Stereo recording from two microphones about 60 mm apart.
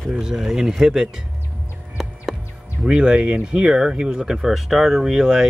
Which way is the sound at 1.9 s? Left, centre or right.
Centre.